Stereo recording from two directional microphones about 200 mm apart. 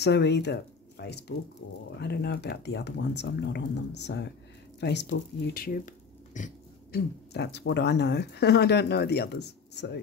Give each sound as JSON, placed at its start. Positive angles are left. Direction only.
{"t": 0.0, "sound": "speech", "side_deg": 55}
{"t": 7.3, "sound": "speech", "side_deg": 55}